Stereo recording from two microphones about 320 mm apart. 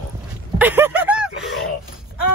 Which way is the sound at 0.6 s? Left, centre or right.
Centre.